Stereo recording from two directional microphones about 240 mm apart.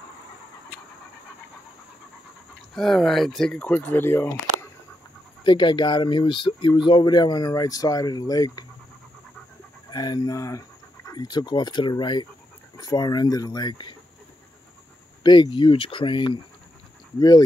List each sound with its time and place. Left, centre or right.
2.7 s speech: centre
9.8 s speech: centre
15.2 s speech: centre